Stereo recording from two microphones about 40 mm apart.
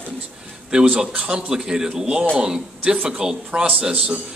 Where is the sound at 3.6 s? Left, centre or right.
Right.